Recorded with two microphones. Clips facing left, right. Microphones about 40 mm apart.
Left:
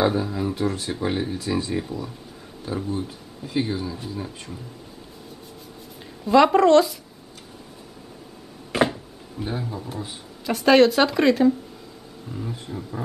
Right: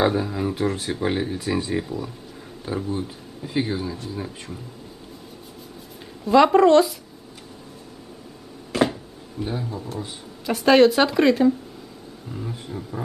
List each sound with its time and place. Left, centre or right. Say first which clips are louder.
0.0 s speech: right 1 dB; centre
2.6 s speech: right 1 dB; centre
6.2 s speech: right 1 dB; centre
8.7 s a sound: even; left
9.4 s speech: right 1 dB; centre